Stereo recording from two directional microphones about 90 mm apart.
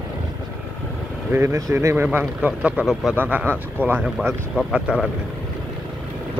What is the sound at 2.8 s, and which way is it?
Speech, 5° right (ahead or behind).